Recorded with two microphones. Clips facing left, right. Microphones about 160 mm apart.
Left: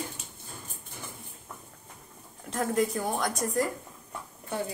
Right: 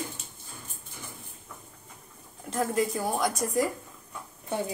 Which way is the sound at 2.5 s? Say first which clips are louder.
Even; 5° right (ahead or behind).